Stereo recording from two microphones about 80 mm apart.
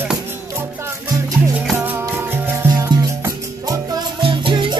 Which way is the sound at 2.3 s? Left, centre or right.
Right.